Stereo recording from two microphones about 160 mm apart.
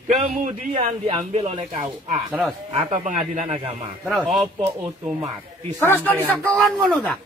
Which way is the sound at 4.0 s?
Centre (ahead or behind).